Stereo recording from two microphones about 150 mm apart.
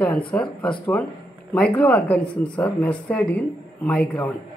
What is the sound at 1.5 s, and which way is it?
Speech, 10° left (ahead or behind).